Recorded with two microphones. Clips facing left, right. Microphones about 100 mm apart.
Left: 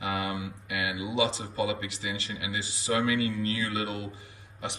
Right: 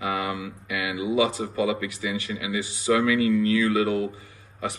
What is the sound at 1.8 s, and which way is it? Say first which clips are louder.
Speech: right 6 dB; 30° left (ahead or behind).